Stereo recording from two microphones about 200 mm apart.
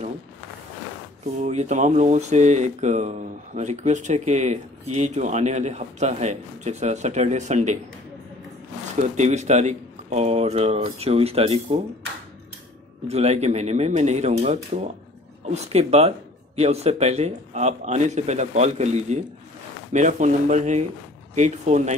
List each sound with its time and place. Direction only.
1.4 s speech: 35° right (ahead or behind)
9.0 s speech: 35° right (ahead or behind)
13.1 s speech: 35° right (ahead or behind)